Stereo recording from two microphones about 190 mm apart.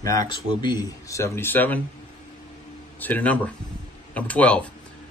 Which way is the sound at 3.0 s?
10° left (ahead or behind).